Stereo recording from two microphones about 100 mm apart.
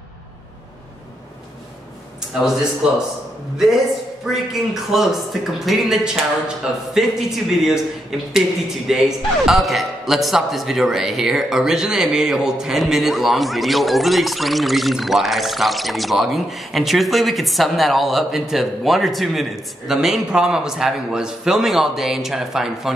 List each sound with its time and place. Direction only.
4.3 s a man's voice: centre (ahead or behind)